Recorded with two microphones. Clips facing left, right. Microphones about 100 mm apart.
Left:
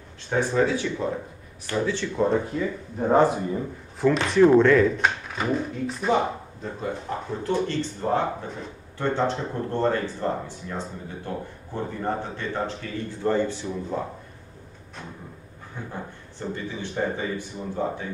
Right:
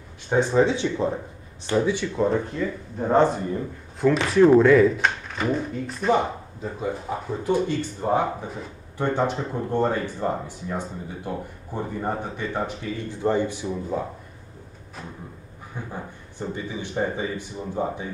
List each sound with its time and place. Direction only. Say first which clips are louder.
0.3 s speech: right 3 dB; 20° right (ahead or behind)
2.1 s speech: left 3 dB; centre (ahead or behind)
15.9 s speech: right 1 dB; 15° right (ahead or behind)